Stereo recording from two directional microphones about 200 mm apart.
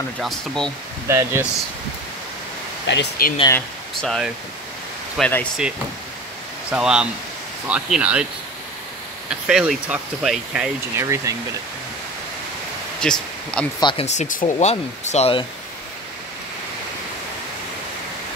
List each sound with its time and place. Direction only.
0.2 s speech: centre (ahead or behind)
1.0 s speech: 10° right (ahead or behind)
2.9 s speech: 50° left (ahead or behind)
3.5 s speech: 5° left (ahead or behind)
6.7 s speech: 5° right (ahead or behind)
9.3 s speech: 5° right (ahead or behind)
13.0 s speech: 5° left (ahead or behind)
13.7 s speech: 25° left (ahead or behind)
14.0 s speech: 40° left (ahead or behind)